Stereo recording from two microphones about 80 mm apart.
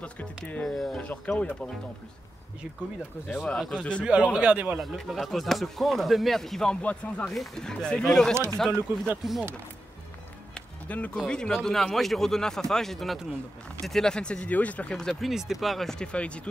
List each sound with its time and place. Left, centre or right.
0.7 s speech: centre
1.0 s speech: centre
3.4 s speech: centre
4.0 s speech: centre
4.7 s speech: centre
8.7 s speech: right
10.5 s music: centre
11.1 s speech: centre
15.0 s speech: centre